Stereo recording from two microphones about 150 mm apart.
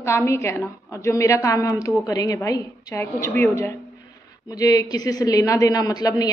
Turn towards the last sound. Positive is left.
turn(degrees=25)  # may be behind; listen again after turning